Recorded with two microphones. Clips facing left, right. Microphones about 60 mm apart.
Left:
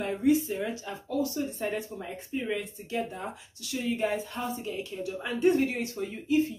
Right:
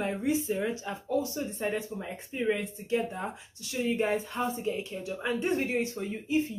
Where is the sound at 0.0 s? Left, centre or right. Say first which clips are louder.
Left 4 dB; centre.